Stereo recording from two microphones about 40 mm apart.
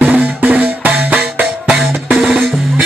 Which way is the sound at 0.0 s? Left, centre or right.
Right.